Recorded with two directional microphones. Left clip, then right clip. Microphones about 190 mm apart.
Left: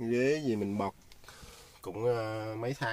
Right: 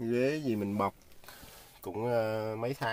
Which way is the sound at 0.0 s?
40° right (ahead or behind).